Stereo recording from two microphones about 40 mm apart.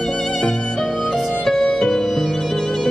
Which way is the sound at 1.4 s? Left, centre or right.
Centre.